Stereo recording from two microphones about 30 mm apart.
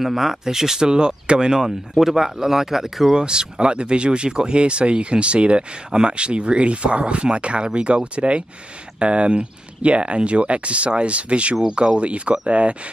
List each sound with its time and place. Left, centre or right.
0.0 s speech: centre
0.8 s speech: right
2.0 s speech: centre
3.2 s speech: right